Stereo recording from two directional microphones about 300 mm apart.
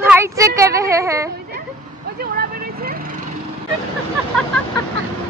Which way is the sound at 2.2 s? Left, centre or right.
Right.